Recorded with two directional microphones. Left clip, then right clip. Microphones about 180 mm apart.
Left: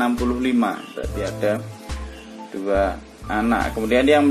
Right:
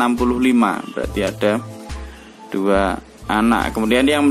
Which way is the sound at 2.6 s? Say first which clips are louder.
Right 3 dB; 45° right (ahead or behind).